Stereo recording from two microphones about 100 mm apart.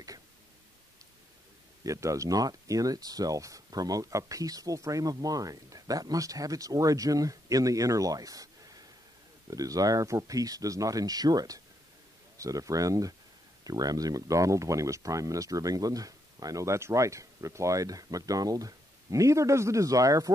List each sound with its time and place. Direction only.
1.8 s speech: 35° right (ahead or behind)
9.5 s speech: 35° right (ahead or behind)